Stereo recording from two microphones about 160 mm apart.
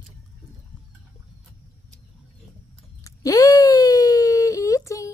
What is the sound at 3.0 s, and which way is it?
Wail, 20° left (ahead or behind).